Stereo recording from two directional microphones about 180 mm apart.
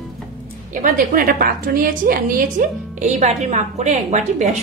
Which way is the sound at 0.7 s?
50° right (ahead or behind).